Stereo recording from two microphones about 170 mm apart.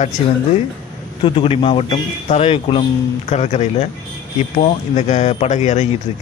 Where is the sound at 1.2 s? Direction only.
30° left (ahead or behind).